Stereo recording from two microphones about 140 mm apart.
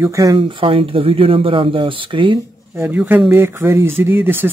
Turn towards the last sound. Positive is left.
turn(degrees=-15)  # may be behind; listen again after turning